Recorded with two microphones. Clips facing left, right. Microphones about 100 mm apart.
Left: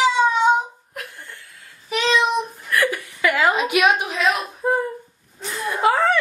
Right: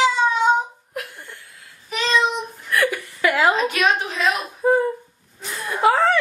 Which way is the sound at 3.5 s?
15° left (ahead or behind).